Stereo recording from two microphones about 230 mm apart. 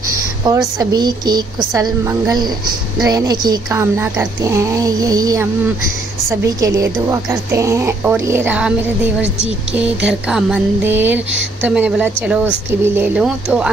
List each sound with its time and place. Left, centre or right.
0.7 s speech: centre
6.6 s speech: centre